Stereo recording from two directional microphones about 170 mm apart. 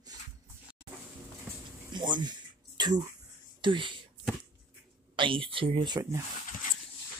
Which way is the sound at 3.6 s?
30° right (ahead or behind).